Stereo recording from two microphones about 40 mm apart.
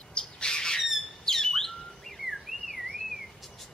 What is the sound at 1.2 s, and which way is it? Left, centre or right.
Bird, centre.